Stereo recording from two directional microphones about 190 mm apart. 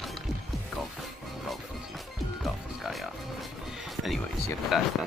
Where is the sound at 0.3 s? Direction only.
Centre (ahead or behind).